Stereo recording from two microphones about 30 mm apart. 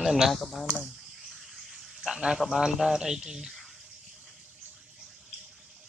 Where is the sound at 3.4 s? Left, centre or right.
Centre.